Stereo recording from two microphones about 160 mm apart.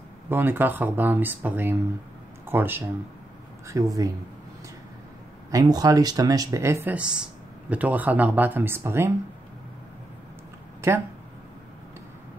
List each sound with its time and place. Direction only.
0.3 s speech: 10° right (ahead or behind)
5.5 s speech: 25° right (ahead or behind)